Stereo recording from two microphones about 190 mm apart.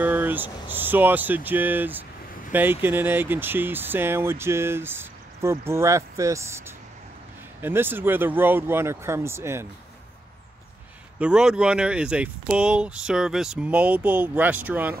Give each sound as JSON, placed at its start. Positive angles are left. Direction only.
{"t": 0.0, "sound": "speech", "side_deg": -10}
{"t": 7.6, "sound": "speech", "side_deg": -10}
{"t": 11.1, "sound": "speech", "side_deg": -5}